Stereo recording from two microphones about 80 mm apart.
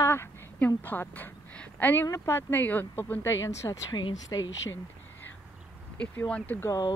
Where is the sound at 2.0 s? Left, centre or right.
Left.